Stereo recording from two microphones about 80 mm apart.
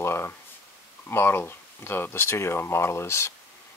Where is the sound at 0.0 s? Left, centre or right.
Left.